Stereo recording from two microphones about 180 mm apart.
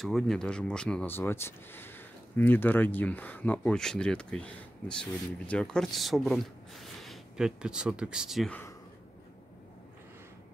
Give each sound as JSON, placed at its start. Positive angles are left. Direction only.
{"t": 0.0, "sound": "speech", "side_deg": 0}